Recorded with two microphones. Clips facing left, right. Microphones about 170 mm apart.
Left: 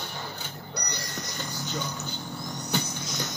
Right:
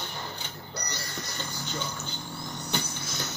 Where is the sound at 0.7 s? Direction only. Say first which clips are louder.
Left 1 dB; 15° left (ahead or behind).